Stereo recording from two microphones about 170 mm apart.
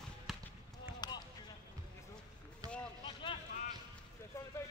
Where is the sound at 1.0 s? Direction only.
25° left (ahead or behind).